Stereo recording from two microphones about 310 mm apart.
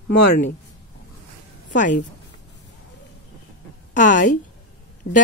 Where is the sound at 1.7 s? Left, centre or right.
Left.